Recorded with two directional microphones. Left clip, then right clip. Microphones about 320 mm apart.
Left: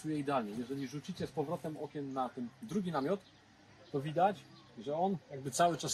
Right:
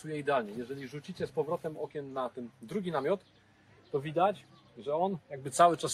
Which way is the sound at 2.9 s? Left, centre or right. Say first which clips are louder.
Right 5 dB; centre.